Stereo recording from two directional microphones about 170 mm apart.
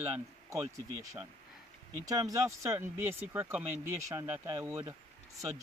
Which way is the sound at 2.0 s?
20° right (ahead or behind).